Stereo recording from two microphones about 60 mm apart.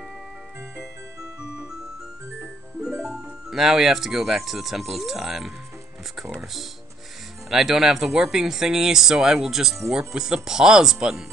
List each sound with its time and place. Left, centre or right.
1.4 s music: centre
2.8 s speech: centre
7.4 s speech: centre